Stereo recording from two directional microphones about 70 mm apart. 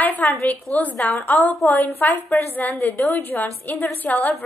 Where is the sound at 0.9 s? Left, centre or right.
Left.